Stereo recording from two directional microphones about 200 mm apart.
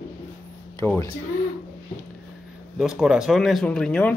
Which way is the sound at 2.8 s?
5° right (ahead or behind).